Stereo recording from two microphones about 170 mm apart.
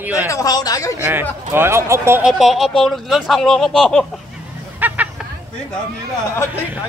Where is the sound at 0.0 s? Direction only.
10° right (ahead or behind).